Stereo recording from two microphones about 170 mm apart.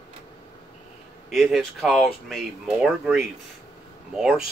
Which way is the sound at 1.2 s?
Centre (ahead or behind).